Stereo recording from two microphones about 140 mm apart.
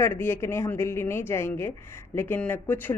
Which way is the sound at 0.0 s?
15° left (ahead or behind).